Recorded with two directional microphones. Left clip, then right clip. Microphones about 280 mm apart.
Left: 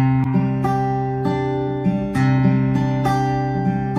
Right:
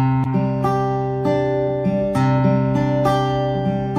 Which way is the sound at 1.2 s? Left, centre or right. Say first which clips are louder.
Right 3 dB; right.